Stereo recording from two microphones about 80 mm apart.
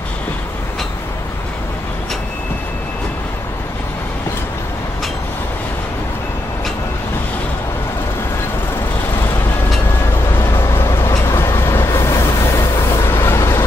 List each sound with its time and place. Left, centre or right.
10.3 s vehicle: left